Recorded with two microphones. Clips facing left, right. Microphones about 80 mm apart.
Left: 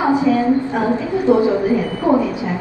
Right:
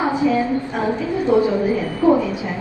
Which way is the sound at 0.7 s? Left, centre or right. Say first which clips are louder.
Left 3 dB; left.